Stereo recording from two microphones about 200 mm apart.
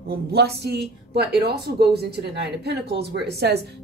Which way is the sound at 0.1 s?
55° right (ahead or behind).